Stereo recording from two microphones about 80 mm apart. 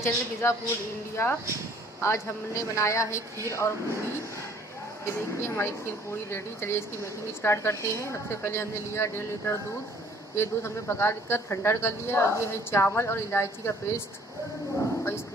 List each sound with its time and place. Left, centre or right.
0.0 s speech: left